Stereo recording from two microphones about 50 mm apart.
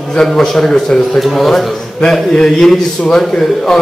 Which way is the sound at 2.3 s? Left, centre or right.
Centre.